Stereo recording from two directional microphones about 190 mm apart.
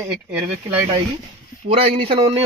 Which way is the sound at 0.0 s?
10° right (ahead or behind).